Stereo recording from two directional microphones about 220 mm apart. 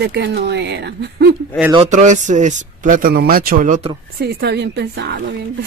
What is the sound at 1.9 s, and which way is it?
Speech, 35° right (ahead or behind).